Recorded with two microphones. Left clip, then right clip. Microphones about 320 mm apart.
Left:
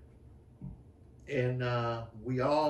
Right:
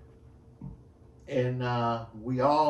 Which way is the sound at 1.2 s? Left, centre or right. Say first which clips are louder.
Right 3 dB; centre.